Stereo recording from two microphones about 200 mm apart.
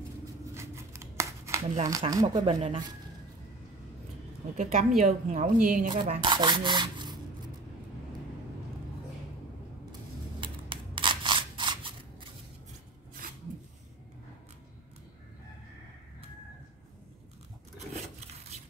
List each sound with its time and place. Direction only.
0.6 s scissors: 15° right (ahead or behind)
4.6 s a woman's voice: 40° right (ahead or behind)
5.9 s rub: 25° right (ahead or behind)
10.4 s scissors: 25° right (ahead or behind)
13.2 s a sound: 45° right (ahead or behind)